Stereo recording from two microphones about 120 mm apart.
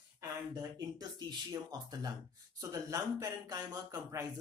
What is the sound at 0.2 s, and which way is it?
Speech, 30° right (ahead or behind).